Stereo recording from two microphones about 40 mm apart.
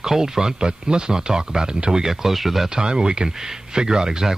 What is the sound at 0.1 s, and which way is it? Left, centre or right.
Speech, centre.